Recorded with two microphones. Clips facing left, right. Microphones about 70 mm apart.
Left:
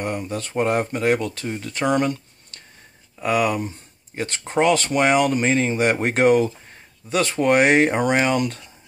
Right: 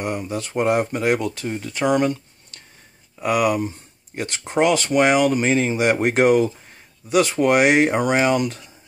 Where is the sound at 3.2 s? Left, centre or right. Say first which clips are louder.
Right 1 dB; centre.